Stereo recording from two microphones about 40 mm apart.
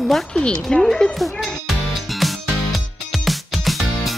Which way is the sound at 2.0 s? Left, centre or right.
Centre.